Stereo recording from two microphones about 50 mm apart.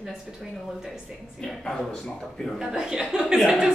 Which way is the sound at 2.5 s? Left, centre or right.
Centre.